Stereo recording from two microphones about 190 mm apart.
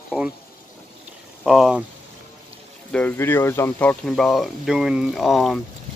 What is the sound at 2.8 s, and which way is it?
Speech, 5° left (ahead or behind).